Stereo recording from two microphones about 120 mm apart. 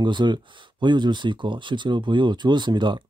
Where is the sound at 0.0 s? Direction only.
40° right (ahead or behind).